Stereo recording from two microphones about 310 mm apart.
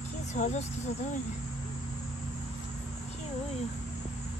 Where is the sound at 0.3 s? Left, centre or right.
Left.